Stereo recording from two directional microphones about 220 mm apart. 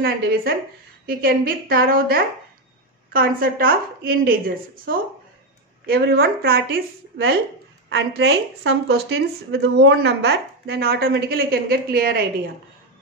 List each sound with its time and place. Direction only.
0.0 s a woman's voice: 45° right (ahead or behind)
5.9 s a woman's voice: 45° right (ahead or behind)